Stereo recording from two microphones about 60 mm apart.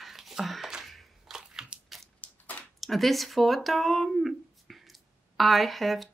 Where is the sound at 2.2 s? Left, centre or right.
Left.